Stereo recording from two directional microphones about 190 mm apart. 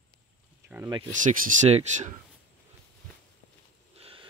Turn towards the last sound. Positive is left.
turn(degrees=-30)  # may be behind; listen again after turning